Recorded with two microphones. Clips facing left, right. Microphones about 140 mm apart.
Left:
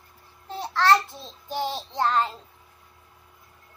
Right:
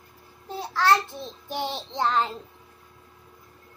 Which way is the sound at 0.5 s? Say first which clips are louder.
Left 1 dB; 5° right (ahead or behind).